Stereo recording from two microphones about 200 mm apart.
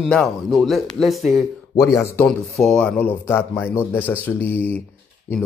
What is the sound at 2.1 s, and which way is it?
Speech, centre (ahead or behind).